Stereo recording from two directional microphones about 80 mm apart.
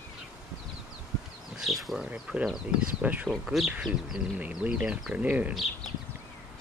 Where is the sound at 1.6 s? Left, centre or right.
Centre.